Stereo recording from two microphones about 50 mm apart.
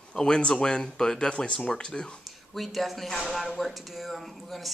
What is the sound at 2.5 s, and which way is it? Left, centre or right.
Speech, centre.